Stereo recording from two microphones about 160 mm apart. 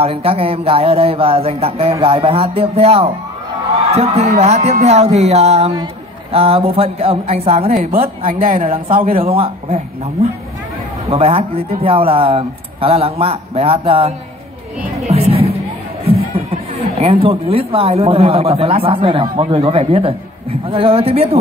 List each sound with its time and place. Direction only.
0.0 s speech: 35° right (ahead or behind)
8.3 s a woman's voice: 60° right (ahead or behind)
8.6 s speech: 35° right (ahead or behind)
8.9 s a woman's voice: 60° right (ahead or behind)
9.2 s speech: 35° right (ahead or behind)
11.1 s speech: 35° right (ahead or behind)
15.0 s music: 40° right (ahead or behind)
17.0 s speech: 35° right (ahead or behind)